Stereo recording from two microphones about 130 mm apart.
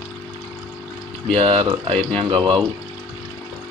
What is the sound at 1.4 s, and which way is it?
Speech, 45° right (ahead or behind).